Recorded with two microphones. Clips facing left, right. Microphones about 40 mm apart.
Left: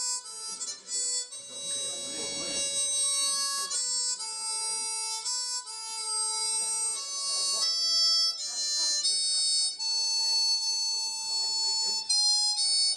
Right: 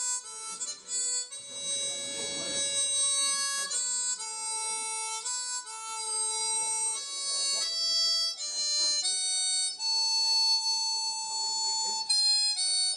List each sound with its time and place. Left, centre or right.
2.5 s bagpipes: right
7.3 s harmonica: right
11.4 s alarm: right
12.2 s harmonica: right